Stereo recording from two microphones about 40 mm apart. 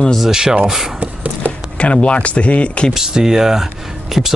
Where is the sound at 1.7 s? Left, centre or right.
Left.